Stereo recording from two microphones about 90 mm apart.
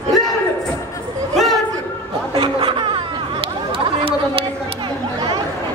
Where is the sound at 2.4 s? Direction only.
70° right (ahead or behind).